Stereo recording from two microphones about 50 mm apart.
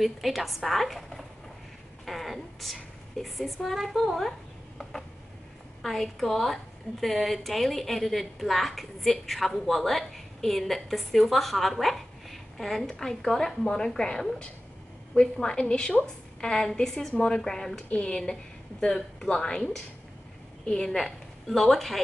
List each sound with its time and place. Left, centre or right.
0.0 s a woman's voice: centre; by 17.4 s left
17.4 s a woman's voice: centre